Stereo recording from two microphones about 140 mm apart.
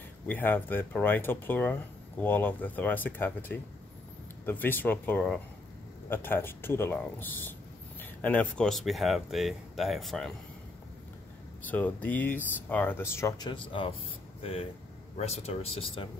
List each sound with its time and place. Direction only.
0.3 s speech: 15° left (ahead or behind)
11.6 s speech: 10° left (ahead or behind)
13.4 s speech: 35° left (ahead or behind)
15.1 s speech: 50° left (ahead or behind)